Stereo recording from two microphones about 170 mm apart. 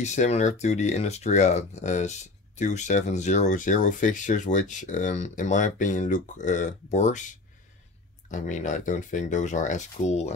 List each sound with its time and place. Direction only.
0.0 s speech: 45° left (ahead or behind)